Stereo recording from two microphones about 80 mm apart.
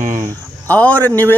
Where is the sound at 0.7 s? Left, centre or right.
Centre.